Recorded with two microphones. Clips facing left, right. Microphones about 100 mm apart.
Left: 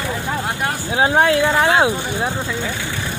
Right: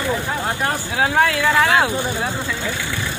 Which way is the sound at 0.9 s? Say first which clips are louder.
Left 4 dB; 20° left (ahead or behind).